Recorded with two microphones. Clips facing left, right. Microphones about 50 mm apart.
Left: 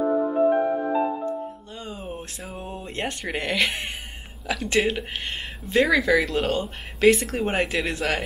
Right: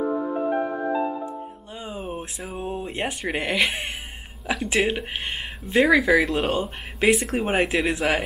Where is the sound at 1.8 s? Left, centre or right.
Centre.